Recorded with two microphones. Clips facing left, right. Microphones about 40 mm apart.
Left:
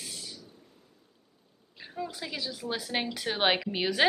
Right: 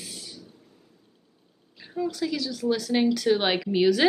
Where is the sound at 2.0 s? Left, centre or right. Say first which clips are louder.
Right 8 dB; centre.